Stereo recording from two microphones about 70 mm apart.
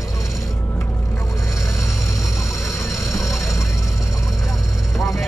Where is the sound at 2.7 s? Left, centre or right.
Left.